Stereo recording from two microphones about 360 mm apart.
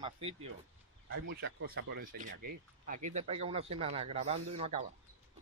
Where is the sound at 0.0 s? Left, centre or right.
Centre.